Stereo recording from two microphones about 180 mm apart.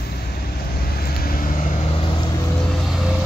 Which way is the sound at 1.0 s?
55° left (ahead or behind).